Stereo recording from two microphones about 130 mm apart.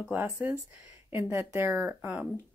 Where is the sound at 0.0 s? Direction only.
15° right (ahead or behind).